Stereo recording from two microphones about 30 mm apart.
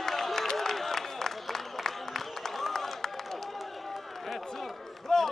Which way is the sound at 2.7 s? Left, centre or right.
Centre.